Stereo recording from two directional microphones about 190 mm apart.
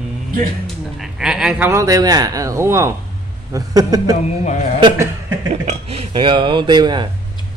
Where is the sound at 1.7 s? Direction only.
15° right (ahead or behind).